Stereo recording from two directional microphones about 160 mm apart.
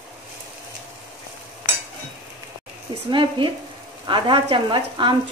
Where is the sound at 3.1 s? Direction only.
30° right (ahead or behind).